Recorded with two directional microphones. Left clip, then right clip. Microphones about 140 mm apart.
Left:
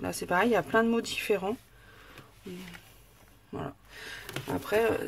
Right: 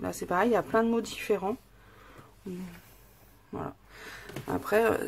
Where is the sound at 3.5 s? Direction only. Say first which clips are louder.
Even; 30° left (ahead or behind).